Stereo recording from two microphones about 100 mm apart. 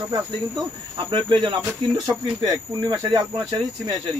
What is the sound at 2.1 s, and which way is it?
Speech, 5° right (ahead or behind).